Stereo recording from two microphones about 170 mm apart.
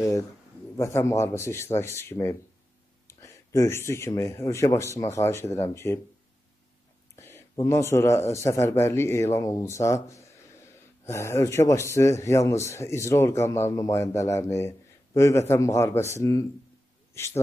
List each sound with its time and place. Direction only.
0.7 s a man's voice: 15° left (ahead or behind)
7.2 s a man's voice: 15° left (ahead or behind)